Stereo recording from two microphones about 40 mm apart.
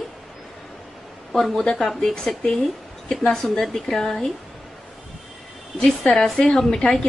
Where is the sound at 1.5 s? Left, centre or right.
Left.